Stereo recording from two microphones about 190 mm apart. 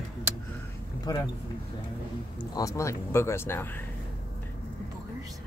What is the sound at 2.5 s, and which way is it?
Speech, 15° left (ahead or behind).